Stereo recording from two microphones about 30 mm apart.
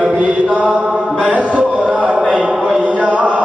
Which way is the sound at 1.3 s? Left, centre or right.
Right.